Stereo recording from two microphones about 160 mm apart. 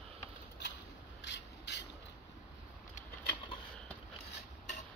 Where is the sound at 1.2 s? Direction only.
90° left.